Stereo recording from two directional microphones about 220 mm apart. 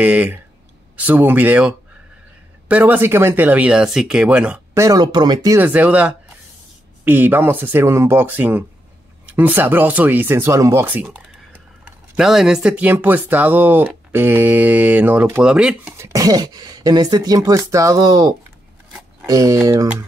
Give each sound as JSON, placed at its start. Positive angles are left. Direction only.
{"t": 0.0, "sound": "speech", "side_deg": -5}
{"t": 16.1, "sound": "speech", "side_deg": -15}